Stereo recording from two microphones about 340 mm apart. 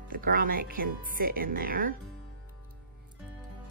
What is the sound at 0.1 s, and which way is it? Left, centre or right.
Speech, right.